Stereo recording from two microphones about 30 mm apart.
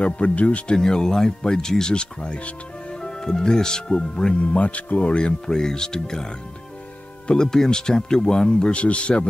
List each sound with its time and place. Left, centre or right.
0.0 s speech: left
0.7 s speech: left
4.4 s speech: left
5.1 s speech: left
7.3 s speech: left
8.7 s speech: left